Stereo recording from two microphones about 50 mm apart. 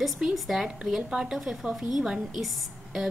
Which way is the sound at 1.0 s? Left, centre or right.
Centre.